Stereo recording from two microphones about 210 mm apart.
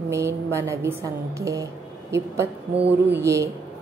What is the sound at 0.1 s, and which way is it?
A woman's voice, 15° right (ahead or behind).